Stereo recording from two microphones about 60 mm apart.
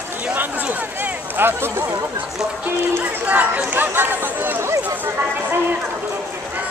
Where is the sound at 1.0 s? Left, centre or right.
Right.